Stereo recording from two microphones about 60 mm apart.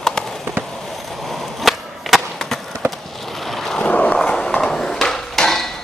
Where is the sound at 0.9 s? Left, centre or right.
Centre.